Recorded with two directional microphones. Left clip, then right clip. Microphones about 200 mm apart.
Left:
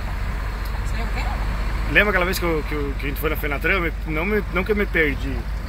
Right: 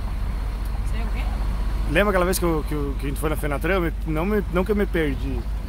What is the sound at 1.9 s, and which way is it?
Speech, 20° right (ahead or behind).